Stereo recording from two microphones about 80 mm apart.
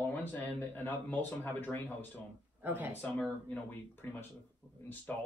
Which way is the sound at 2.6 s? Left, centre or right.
Right.